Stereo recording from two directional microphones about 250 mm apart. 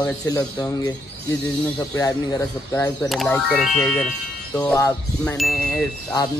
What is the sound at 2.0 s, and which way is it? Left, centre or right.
Speech, centre.